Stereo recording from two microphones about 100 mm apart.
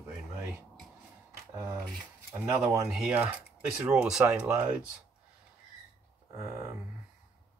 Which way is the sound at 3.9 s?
5° right (ahead or behind).